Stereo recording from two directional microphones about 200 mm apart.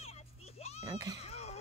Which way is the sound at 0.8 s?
20° right (ahead or behind).